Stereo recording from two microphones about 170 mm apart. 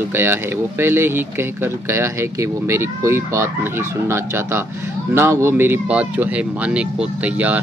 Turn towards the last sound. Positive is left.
turn(degrees=-10)  # may be behind; listen again after turning